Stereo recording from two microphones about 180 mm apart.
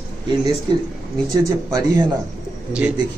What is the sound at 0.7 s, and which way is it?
Speech, 25° right (ahead or behind).